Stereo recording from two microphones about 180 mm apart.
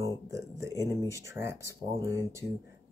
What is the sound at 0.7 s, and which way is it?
Speech, 15° left (ahead or behind).